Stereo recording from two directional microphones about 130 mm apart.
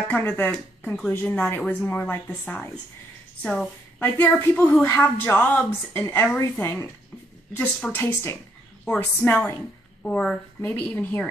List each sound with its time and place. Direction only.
0.1 s a woman's voice: 15° left (ahead or behind)
4.0 s a woman's voice: 15° left (ahead or behind)